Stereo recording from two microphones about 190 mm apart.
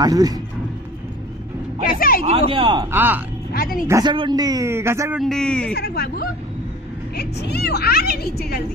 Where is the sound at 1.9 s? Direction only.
50° left (ahead or behind).